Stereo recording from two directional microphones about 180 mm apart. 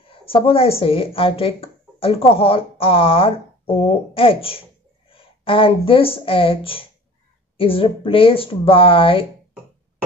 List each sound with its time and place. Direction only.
0.2 s speech: 30° left (ahead or behind)